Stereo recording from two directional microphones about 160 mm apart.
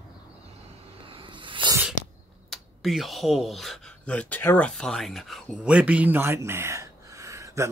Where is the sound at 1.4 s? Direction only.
30° right (ahead or behind).